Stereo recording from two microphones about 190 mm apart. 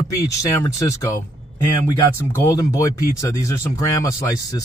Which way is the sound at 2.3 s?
15° left (ahead or behind).